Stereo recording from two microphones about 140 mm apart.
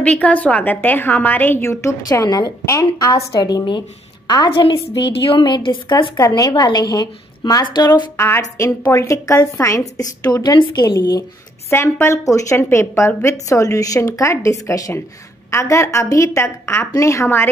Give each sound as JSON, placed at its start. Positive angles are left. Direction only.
{"t": 0.0, "sound": "a woman's voice", "side_deg": 10}
{"t": 8.2, "sound": "a woman's voice", "side_deg": 20}
{"t": 11.7, "sound": "a woman's voice", "side_deg": 15}